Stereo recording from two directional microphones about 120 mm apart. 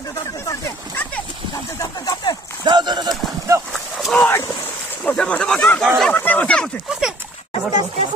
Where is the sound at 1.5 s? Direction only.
35° left (ahead or behind).